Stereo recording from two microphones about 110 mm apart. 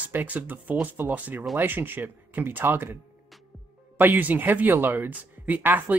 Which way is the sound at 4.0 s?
15° right (ahead or behind).